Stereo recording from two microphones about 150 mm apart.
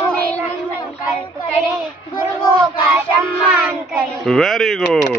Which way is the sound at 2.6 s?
20° right (ahead or behind).